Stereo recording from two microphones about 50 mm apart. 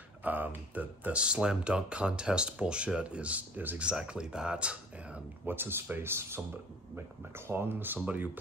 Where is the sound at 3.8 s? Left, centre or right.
Centre.